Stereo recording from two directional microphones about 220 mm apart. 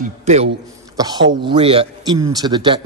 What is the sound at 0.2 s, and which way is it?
Speech, 30° right (ahead or behind).